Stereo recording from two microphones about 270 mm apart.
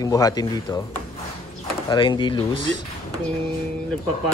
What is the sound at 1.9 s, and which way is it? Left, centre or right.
Speech, centre.